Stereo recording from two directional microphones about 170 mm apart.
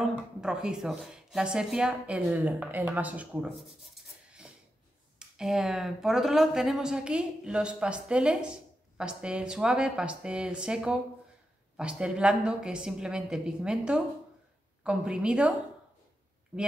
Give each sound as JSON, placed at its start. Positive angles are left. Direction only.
{"t": 0.0, "sound": "a woman's voice", "side_deg": -5}
{"t": 16.5, "sound": "speech", "side_deg": -10}